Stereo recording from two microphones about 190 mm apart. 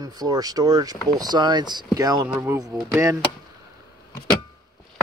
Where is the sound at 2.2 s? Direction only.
10° right (ahead or behind).